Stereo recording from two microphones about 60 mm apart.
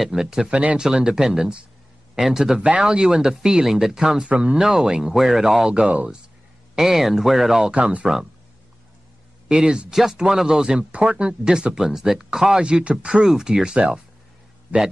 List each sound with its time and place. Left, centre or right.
0.0 s speech: centre
4.6 s speech: centre
6.7 s speech: centre
7.7 s speech: centre
9.5 s speech: centre